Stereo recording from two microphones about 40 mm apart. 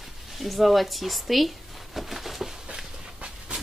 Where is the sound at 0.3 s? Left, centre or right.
Centre.